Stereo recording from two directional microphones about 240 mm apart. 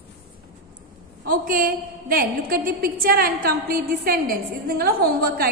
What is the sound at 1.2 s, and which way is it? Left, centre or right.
A woman's voice, right.